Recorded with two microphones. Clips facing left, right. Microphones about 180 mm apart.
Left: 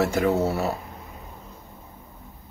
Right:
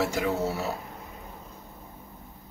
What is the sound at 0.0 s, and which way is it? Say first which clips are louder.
Speech: left 5 dB; 55° left (ahead or behind).